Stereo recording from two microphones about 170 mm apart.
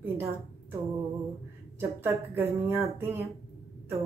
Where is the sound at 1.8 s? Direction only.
15° right (ahead or behind).